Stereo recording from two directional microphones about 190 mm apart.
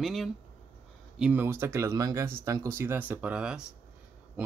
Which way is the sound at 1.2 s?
10° right (ahead or behind).